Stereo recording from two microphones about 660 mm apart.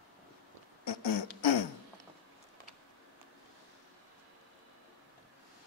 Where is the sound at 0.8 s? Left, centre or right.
Left.